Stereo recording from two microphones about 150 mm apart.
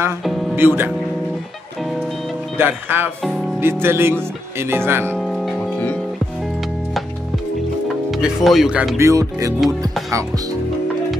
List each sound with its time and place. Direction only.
0.6 s speech: 15° right (ahead or behind)
2.5 s speech: 15° right (ahead or behind)
5.1 s music: centre (ahead or behind)
8.1 s speech: centre (ahead or behind)
8.9 s music: 20° right (ahead or behind)